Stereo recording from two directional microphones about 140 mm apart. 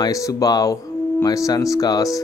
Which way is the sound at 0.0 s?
25° left (ahead or behind).